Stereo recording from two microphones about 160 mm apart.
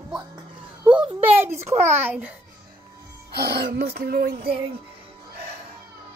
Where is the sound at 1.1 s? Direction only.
10° right (ahead or behind).